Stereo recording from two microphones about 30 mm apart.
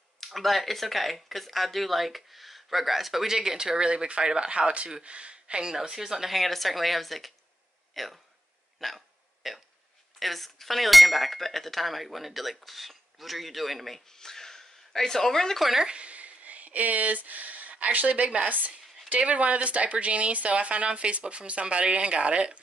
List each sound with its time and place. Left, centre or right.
0.2 s cutlery: centre; by 3.9 s right
3.9 s speech: right
5.8 s a woman's voice: centre
6.3 s cutlery: centre
7.9 s speech: centre
8.7 s hiccup: centre
9.4 s cutlery: centre
14.1 s a sound: centre
15.0 s speech: centre
15.9 s speech: right
19.0 s speech: right